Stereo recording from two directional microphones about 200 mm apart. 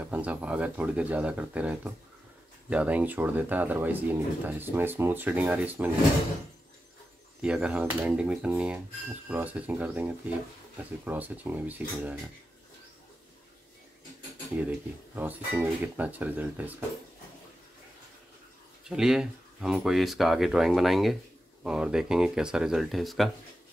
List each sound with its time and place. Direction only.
0.0 s speech: 5° right (ahead or behind)
7.4 s speech: 5° right (ahead or behind)
15.1 s speech: 10° right (ahead or behind)
18.9 s speech: 5° right (ahead or behind)